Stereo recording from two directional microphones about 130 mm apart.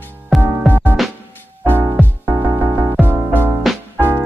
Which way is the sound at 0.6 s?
15° right (ahead or behind).